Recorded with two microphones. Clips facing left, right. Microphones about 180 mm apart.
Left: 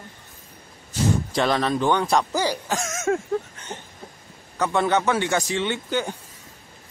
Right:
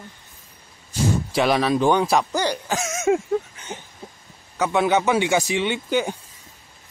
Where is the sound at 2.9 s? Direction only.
15° right (ahead or behind).